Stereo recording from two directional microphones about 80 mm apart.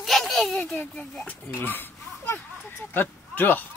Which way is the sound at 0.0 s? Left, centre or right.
Centre.